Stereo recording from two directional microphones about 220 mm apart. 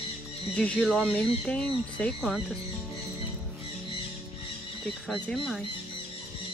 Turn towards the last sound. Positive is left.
turn(degrees=0)  # may be behind; listen again after turning